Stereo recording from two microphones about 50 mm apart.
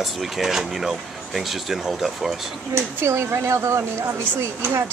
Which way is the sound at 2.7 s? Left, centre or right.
Right.